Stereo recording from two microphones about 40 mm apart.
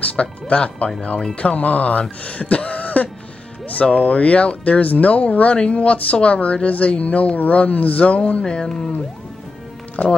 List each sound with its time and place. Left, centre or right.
0.0 s speech: left; by 8.9 s centre
10.0 s speech: left